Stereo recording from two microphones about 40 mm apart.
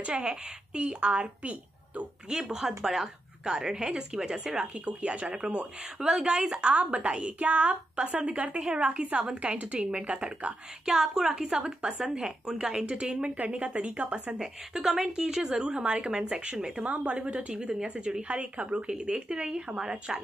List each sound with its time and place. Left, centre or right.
0.0 s a woman's voice: right
2.5 s a woman's voice: centre; by 10.5 s right
10.9 s a woman's voice: centre
12.8 s a woman's voice: right
14.4 s a woman's voice: centre
16.8 s a woman's voice: right; by 20.2 s centre